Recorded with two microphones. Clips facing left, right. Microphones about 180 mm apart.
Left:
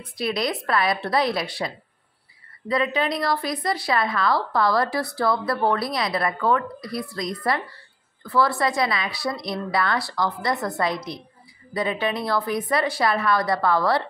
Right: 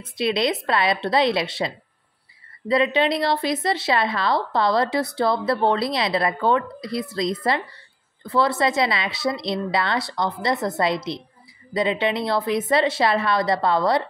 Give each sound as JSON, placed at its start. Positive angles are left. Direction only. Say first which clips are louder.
{"t": 0.0, "sound": "speech", "louder": "right 3 dB", "side_deg": -25}
{"t": 2.7, "sound": "speech", "louder": "right 4 dB", "side_deg": -25}